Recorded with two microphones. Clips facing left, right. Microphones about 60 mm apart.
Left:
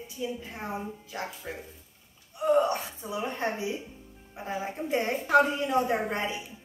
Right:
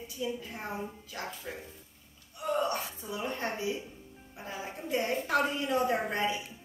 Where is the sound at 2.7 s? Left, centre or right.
Left.